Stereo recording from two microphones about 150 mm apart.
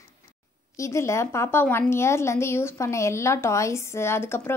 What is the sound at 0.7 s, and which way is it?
A woman's voice, 20° left (ahead or behind).